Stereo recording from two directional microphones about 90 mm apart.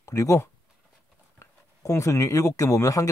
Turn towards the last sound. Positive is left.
turn(degrees=35)  # may be behind; listen again after turning